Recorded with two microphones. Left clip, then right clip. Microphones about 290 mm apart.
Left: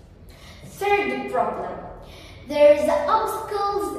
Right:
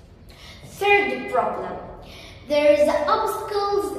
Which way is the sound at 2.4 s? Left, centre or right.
Centre.